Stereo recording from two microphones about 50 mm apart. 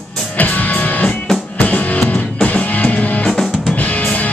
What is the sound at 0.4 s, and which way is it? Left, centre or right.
Music, left.